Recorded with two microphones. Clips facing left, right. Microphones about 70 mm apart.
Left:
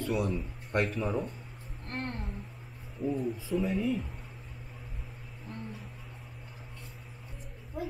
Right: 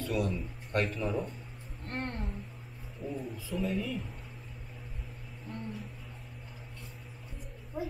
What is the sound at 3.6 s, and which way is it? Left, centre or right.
Speech, centre.